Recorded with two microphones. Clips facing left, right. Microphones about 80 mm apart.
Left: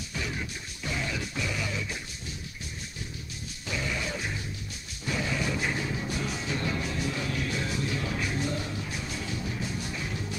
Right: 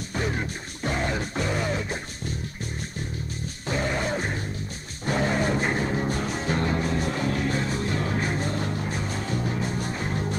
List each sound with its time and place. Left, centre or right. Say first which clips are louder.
0.1 s music: right 7 dB; right
3.6 s music: right 6 dB; right